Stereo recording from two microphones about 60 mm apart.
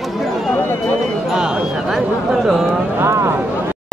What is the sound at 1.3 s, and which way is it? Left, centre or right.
Speech, centre.